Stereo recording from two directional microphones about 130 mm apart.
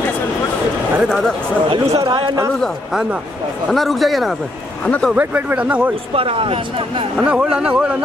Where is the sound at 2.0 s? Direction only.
40° right (ahead or behind).